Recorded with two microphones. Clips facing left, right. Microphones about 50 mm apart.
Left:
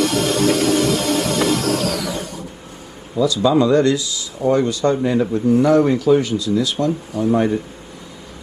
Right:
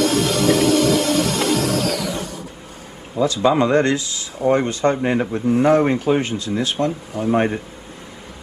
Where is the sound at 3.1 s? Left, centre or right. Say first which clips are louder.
Left 1 dB; right.